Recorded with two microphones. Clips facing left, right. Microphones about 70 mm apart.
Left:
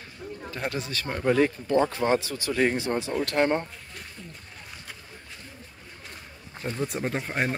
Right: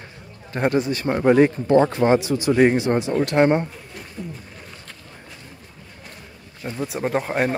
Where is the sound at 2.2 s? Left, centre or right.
Centre.